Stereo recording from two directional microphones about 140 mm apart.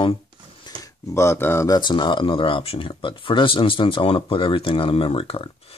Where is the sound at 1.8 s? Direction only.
35° left (ahead or behind).